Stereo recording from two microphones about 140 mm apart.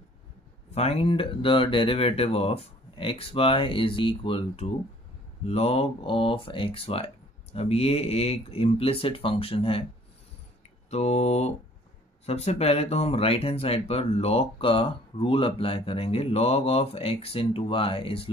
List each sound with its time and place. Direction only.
0.7 s speech: 45° left (ahead or behind)
10.9 s speech: 50° left (ahead or behind)